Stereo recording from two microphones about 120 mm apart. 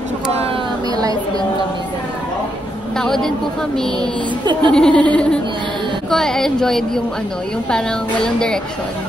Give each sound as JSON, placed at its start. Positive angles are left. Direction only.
{"t": 3.0, "sound": "speech", "side_deg": 5}
{"t": 4.0, "sound": "a child's voice", "side_deg": -40}
{"t": 4.7, "sound": "speech", "side_deg": 10}